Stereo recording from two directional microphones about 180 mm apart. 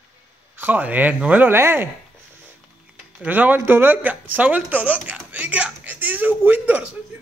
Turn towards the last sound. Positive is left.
turn(degrees=-10)  # may be behind; listen again after turning